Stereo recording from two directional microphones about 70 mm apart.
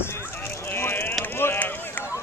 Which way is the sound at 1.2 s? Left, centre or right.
Left.